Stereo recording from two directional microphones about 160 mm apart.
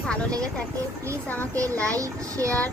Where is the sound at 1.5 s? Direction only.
20° right (ahead or behind).